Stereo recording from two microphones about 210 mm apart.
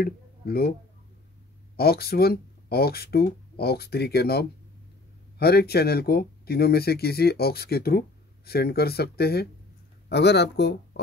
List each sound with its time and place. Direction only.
0.0 s speech: 45° left (ahead or behind)
1.8 s speech: 50° left (ahead or behind)